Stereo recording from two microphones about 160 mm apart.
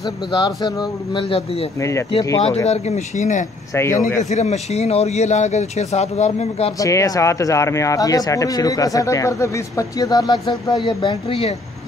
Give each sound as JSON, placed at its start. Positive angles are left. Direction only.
{"t": 0.0, "sound": "speech", "side_deg": 25}
{"t": 1.8, "sound": "speech", "side_deg": 20}
{"t": 2.4, "sound": "a man's voice", "side_deg": 40}
{"t": 3.7, "sound": "speech", "side_deg": 15}
{"t": 4.2, "sound": "a man's voice", "side_deg": 45}
{"t": 6.8, "sound": "speech", "side_deg": 20}